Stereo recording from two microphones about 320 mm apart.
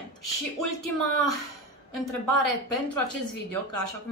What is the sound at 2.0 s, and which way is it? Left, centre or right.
Speech, left.